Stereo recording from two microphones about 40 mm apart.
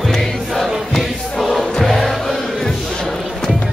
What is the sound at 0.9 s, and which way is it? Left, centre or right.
Music, centre.